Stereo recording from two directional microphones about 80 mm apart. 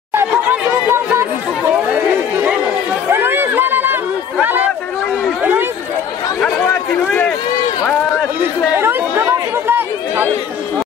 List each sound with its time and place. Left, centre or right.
0.1 s chatter: right
3.1 s chatter: right
7.1 s run: centre
8.7 s chatter: right